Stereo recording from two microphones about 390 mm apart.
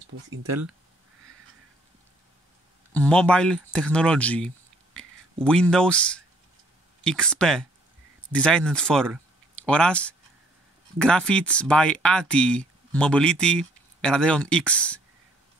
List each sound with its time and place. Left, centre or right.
0.3 s speech: right
2.9 s speech: centre